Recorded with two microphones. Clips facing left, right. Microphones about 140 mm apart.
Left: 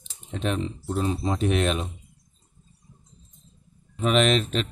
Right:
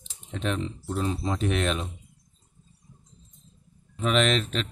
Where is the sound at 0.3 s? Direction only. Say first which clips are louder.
Left 2 dB; 10° left (ahead or behind).